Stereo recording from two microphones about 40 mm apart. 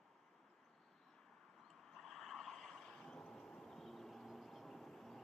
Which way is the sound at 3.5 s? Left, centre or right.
Centre.